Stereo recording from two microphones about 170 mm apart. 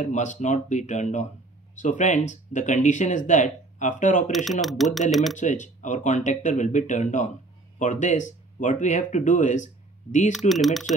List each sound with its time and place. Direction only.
0.0 s speech: 45° left (ahead or behind)
4.5 s speech: centre (ahead or behind)
5.4 s speech: 45° left (ahead or behind)
10.5 s speech: centre (ahead or behind)